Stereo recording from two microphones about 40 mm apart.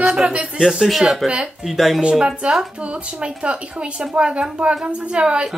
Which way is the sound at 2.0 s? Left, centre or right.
Right.